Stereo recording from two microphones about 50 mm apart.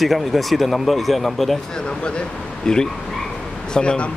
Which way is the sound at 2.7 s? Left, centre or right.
Centre.